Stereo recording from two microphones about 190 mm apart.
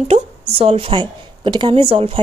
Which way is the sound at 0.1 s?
30° right (ahead or behind).